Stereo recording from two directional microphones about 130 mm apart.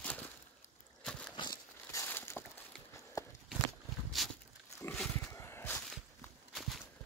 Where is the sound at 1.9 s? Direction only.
20° left (ahead or behind).